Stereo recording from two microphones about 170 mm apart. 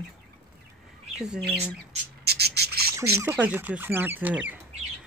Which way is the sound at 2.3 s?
70° right (ahead or behind).